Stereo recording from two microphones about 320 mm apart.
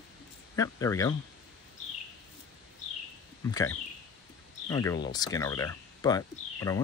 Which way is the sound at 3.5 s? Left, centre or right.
Centre.